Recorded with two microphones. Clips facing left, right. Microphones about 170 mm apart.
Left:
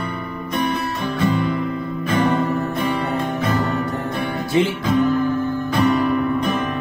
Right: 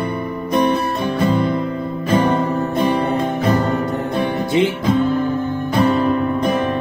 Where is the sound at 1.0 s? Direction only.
35° right (ahead or behind).